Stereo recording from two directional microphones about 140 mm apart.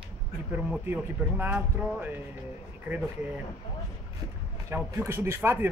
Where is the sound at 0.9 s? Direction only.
15° right (ahead or behind).